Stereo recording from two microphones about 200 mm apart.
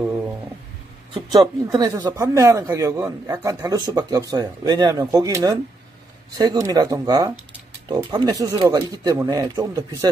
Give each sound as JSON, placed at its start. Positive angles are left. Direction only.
{"t": 1.1, "sound": "speech", "side_deg": -20}